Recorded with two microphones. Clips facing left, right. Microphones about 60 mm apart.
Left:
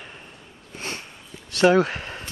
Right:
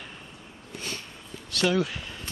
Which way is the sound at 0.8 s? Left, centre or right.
Left.